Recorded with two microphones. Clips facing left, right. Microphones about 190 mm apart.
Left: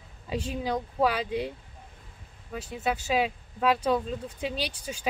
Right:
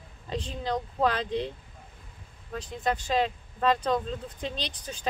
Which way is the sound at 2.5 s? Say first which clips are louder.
Even; 5° left (ahead or behind).